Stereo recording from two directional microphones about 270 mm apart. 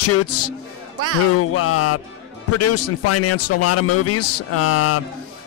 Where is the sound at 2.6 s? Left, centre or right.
Left.